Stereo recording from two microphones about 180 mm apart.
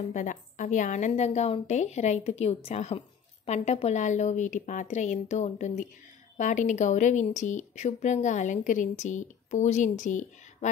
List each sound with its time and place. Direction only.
0.1 s a woman's voice: 45° left (ahead or behind)